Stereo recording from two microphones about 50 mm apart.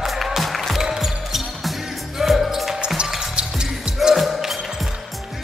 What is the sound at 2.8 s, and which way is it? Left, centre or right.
Music, centre.